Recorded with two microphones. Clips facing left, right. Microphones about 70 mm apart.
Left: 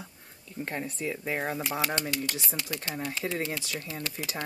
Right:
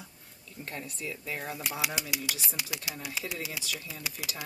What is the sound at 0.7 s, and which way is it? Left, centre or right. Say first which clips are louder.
Speech: left 5 dB; left.